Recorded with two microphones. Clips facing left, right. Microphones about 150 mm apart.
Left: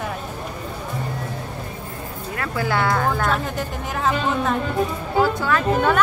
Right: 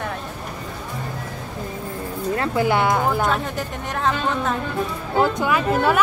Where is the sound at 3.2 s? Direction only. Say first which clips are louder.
Even; centre (ahead or behind).